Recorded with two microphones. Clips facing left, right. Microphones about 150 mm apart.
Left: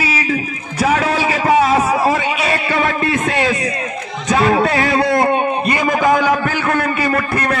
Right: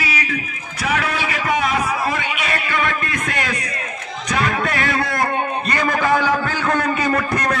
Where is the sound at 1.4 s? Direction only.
20° left (ahead or behind).